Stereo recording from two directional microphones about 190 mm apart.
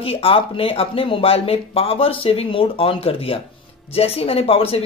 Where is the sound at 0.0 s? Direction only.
30° left (ahead or behind).